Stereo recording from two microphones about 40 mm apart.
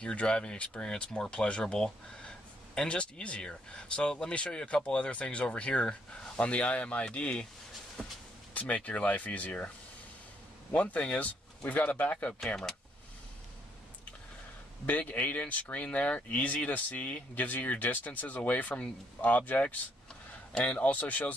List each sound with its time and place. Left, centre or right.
0.0 s speech: left
8.0 s speech: centre
8.5 s speech: left
10.9 s speech: left
14.9 s speech: left